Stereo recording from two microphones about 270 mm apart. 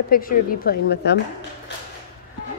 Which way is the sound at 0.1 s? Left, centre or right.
Left.